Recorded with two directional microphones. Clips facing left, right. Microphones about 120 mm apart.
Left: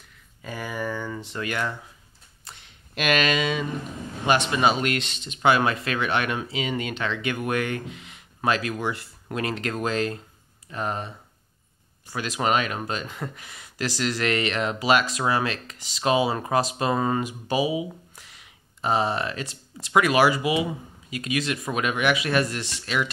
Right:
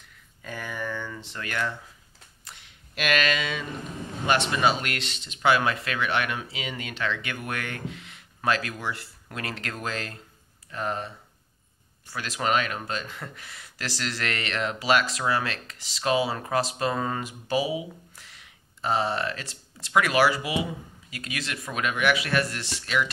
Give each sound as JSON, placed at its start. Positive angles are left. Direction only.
{"t": 0.4, "sound": "speech", "side_deg": 10}
{"t": 2.4, "sound": "a sound", "side_deg": 25}
{"t": 4.3, "sound": "speech", "side_deg": 20}
{"t": 12.1, "sound": "speech", "side_deg": 20}